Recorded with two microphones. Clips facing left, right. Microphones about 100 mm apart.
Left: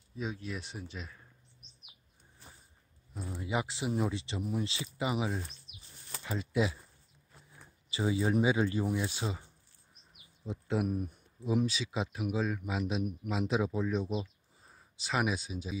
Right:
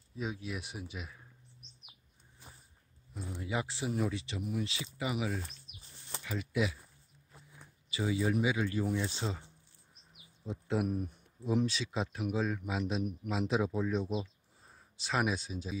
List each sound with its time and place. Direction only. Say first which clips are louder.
0.2 s speech: even; 5° right (ahead or behind)
3.2 s speech: left 2 dB; 15° left (ahead or behind)
7.9 s speech: left 2 dB; 30° left (ahead or behind); by 15.8 s 5° left (ahead or behind)